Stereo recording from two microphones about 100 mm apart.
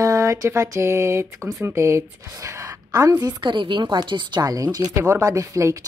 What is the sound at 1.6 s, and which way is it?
A woman's voice, 25° right (ahead or behind).